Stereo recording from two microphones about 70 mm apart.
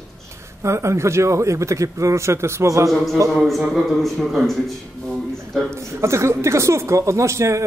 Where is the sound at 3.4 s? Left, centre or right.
Centre.